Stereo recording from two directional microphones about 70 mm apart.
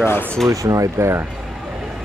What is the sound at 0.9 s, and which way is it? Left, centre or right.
Speech, right.